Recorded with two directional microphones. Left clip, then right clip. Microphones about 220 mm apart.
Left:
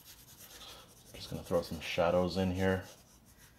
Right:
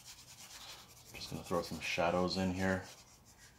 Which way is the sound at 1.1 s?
25° left (ahead or behind).